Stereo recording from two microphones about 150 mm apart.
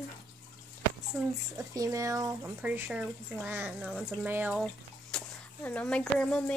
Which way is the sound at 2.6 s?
10° right (ahead or behind).